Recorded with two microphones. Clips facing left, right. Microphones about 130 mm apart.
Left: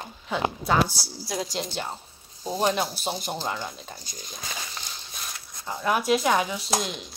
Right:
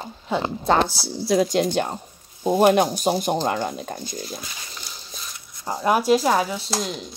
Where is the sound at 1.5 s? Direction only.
50° right (ahead or behind).